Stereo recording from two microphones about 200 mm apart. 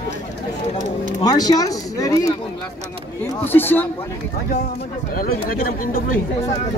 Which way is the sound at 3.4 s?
10° left (ahead or behind).